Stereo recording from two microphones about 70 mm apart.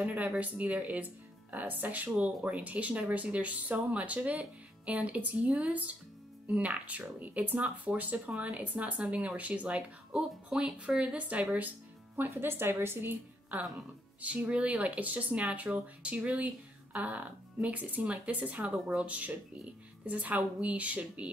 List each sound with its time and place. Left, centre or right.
0.0 s speech: right
12.2 s a woman's voice: right